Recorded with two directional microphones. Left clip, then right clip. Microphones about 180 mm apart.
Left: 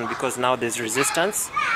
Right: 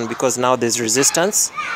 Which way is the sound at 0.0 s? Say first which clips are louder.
Right 5 dB; 40° right (ahead or behind).